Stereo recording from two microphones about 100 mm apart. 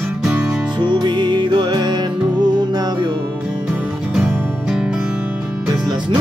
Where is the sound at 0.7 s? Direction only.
50° right (ahead or behind).